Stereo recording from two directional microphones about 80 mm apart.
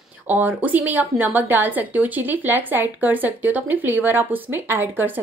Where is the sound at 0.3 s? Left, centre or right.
Right.